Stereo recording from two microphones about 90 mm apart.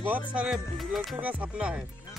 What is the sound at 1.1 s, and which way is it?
Music, 15° right (ahead or behind).